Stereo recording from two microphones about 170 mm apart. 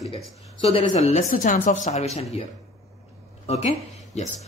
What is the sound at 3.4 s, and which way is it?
Speech, 40° left (ahead or behind).